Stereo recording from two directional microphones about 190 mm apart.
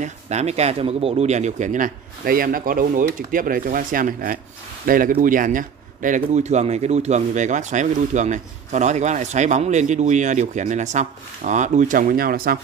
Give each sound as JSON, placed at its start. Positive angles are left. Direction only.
{"t": 0.0, "sound": "a man's voice", "side_deg": -35}